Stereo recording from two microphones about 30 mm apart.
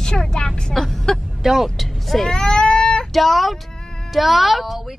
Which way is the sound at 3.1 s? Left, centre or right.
Centre.